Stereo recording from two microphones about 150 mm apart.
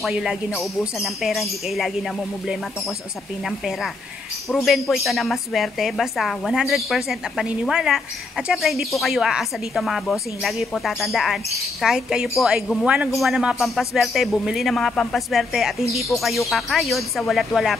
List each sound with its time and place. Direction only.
0.0 s a woman's voice: 5° right (ahead or behind)